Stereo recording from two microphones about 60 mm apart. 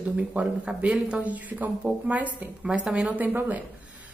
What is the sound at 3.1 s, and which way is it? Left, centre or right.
Speech, right.